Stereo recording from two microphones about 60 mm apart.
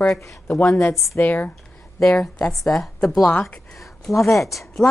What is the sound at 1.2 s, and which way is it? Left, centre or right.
Speech, left.